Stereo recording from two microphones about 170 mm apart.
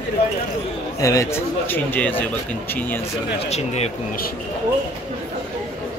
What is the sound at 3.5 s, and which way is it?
Speech, 40° left (ahead or behind).